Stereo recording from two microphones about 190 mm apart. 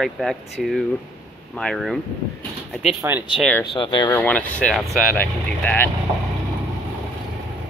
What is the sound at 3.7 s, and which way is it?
Speech, 25° left (ahead or behind).